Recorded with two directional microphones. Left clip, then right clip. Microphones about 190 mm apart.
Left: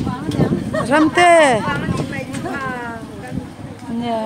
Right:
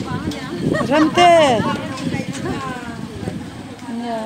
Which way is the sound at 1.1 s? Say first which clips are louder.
Even; centre (ahead or behind).